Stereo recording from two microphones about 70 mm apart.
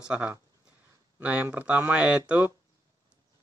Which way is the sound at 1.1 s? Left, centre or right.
Right.